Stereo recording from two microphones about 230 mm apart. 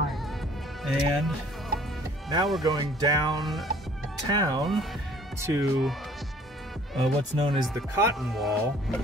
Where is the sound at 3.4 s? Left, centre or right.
Centre.